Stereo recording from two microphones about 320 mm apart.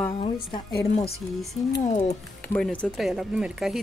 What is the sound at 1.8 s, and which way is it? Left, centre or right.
Speech, left.